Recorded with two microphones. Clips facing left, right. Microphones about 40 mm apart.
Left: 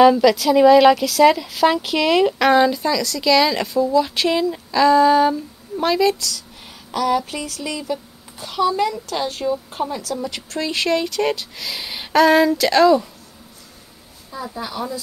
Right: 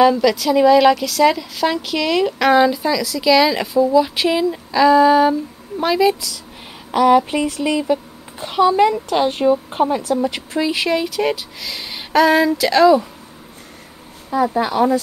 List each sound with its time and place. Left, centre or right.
0.0 s speech: centre
6.9 s a child's voice: right
10.6 s speech: centre
14.3 s speech: right